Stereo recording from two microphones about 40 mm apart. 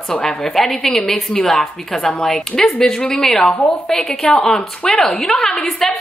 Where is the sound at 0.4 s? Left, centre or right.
Centre.